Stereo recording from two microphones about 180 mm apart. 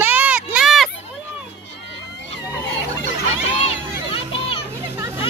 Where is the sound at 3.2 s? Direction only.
35° left (ahead or behind).